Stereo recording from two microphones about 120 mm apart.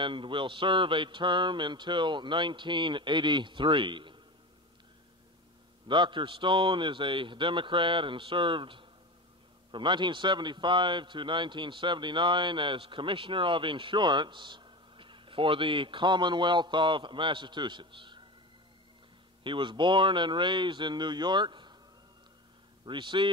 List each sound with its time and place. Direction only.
0.0 s a man's voice: 45° right (ahead or behind)
5.9 s a man's voice: 40° right (ahead or behind)
19.4 s a man's voice: 40° right (ahead or behind)
22.8 s a man's voice: 40° right (ahead or behind)